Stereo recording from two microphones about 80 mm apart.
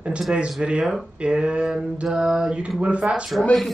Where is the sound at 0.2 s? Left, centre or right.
Centre.